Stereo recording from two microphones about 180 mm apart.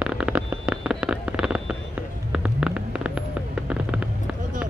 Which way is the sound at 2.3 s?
5° right (ahead or behind).